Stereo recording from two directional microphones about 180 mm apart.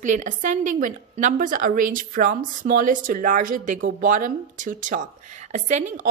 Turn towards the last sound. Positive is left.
turn(degrees=-45)  # may be behind; listen again after turning